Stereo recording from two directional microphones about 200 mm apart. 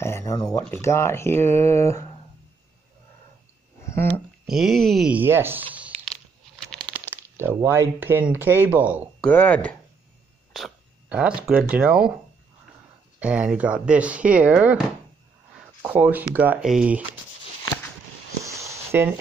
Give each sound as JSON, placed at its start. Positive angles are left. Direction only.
{"t": 0.0, "sound": "speech", "side_deg": 15}
{"t": 3.9, "sound": "speech", "side_deg": 10}
{"t": 4.5, "sound": "speech", "side_deg": 0}
{"t": 7.1, "sound": "speech", "side_deg": -10}
{"t": 9.2, "sound": "speech", "side_deg": 10}
{"t": 13.2, "sound": "speech", "side_deg": -5}
{"t": 15.8, "sound": "speech", "side_deg": -10}
{"t": 18.4, "sound": "a sound", "side_deg": -15}